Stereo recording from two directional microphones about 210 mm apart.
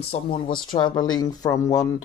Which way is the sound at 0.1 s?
35° left (ahead or behind).